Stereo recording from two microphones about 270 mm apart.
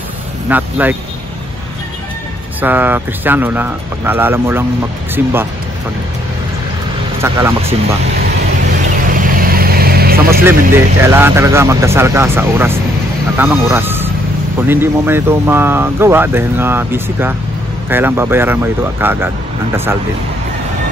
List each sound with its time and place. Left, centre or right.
0.5 s speech: centre
2.6 s speech: centre
7.2 s speech: centre
9.1 s vehicle: right
10.4 s speech: centre